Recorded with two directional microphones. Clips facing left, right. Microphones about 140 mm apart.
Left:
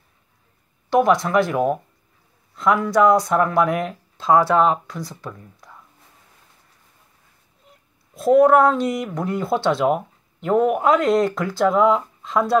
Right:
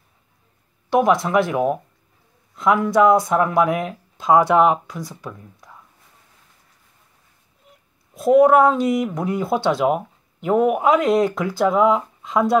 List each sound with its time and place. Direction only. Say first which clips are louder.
1.1 s a man's voice: even; centre (ahead or behind)
4.3 s speech: right 1 dB; 15° right (ahead or behind)
8.1 s speech: right 1 dB; 15° right (ahead or behind)
8.5 s speech: right 1 dB; 5° right (ahead or behind)